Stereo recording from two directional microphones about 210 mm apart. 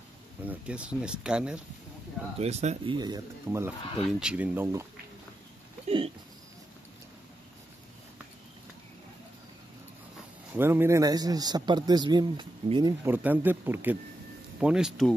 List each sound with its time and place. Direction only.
0.5 s speech: 5° right (ahead or behind)
2.3 s speech: 30° right (ahead or behind)
3.4 s speech: 10° right (ahead or behind)
5.9 s speech: 25° right (ahead or behind)
10.5 s speech: 10° right (ahead or behind)
13.0 s speech: 10° right (ahead or behind)